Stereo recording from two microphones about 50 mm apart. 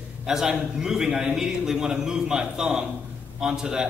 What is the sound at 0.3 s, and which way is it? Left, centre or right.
A man's voice, centre.